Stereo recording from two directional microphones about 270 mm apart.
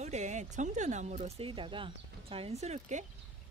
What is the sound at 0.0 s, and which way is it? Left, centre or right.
Speech, right.